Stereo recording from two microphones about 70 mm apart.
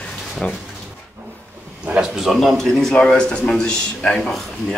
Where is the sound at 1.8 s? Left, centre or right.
Centre.